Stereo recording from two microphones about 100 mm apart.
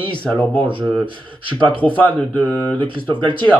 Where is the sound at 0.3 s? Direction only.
5° right (ahead or behind).